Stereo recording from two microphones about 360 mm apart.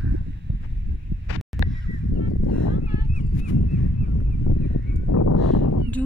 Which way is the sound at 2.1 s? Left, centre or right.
Left.